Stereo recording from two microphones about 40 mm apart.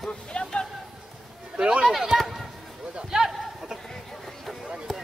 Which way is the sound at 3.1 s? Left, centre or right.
Centre.